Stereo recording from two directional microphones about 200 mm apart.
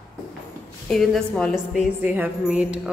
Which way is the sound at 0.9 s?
Centre (ahead or behind).